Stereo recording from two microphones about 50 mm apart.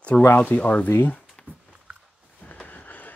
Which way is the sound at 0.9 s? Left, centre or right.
Left.